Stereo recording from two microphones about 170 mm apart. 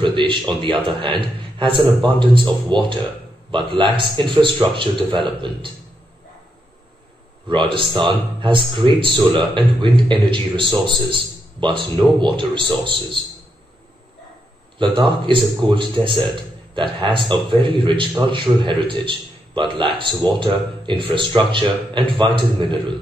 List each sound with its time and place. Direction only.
0.0 s a man's voice: 30° right (ahead or behind)
7.4 s speech: 30° right (ahead or behind)
14.8 s speech: 30° right (ahead or behind)